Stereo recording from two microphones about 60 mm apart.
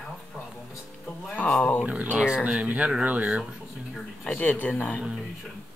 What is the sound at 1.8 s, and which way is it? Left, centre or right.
Speech, right.